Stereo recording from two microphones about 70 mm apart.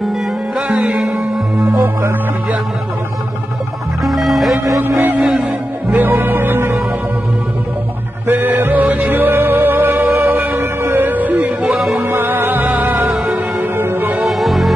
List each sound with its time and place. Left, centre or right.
0.6 s music: right
4.0 s music: centre
4.8 s music: right
8.3 s music: right
11.7 s music: centre
12.0 s music: right
14.2 s music: centre